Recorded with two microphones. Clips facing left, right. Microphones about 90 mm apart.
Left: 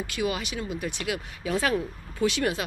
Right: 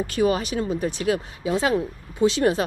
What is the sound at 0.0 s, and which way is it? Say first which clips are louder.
Speech: right 7 dB; 40° right (ahead or behind).